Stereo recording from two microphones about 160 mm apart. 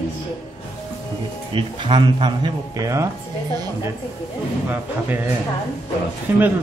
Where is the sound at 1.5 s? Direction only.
30° right (ahead or behind).